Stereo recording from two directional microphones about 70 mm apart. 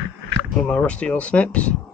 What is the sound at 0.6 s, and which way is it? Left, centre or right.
Speech, centre.